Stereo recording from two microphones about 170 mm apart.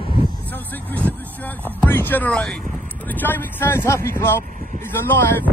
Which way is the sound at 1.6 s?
10° left (ahead or behind).